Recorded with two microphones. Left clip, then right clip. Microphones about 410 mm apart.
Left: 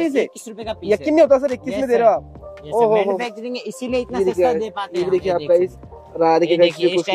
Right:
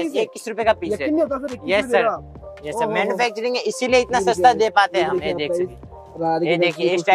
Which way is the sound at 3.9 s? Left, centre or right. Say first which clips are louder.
Right 2 dB; right.